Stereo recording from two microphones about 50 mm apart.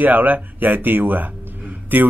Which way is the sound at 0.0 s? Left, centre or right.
Right.